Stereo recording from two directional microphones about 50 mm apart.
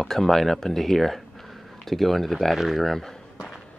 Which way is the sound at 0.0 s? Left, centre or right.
Centre.